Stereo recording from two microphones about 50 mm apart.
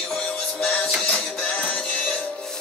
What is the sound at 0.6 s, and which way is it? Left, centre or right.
Music, left.